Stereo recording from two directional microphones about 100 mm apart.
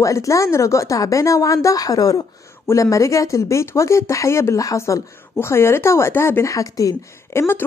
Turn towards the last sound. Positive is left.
turn(degrees=30)  # may be behind; listen again after turning